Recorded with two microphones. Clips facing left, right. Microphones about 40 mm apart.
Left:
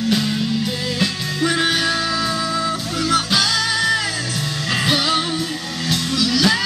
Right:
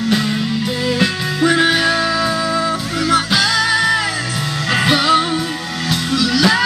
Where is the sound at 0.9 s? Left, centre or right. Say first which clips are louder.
Right 4 dB; right.